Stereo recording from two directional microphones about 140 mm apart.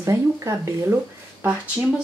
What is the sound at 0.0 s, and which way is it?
Speech, 20° right (ahead or behind).